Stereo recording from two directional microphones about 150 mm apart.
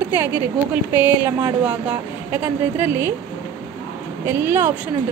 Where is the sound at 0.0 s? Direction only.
10° right (ahead or behind).